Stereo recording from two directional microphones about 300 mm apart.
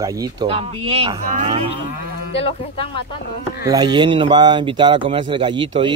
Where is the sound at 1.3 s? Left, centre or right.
Right.